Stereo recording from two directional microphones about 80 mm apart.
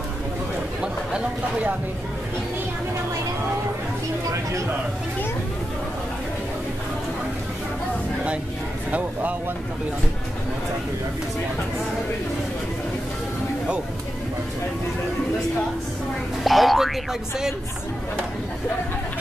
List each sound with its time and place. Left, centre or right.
1.1 s speech: centre
16.4 s speech: centre